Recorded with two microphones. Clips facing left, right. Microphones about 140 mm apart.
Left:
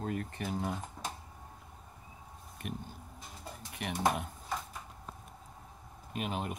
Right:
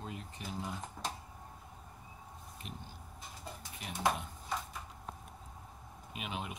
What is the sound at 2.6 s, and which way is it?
Speech, 55° left (ahead or behind).